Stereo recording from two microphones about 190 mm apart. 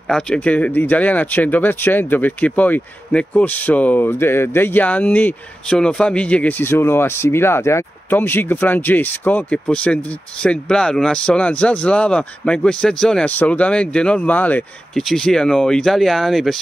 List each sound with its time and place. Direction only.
0.1 s speech: 5° left (ahead or behind)